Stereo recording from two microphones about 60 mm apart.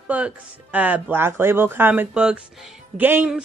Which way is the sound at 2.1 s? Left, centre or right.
Centre.